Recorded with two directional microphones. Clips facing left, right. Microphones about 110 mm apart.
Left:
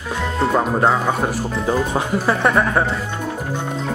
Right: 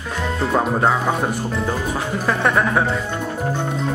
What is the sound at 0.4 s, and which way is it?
Speech, centre (ahead or behind).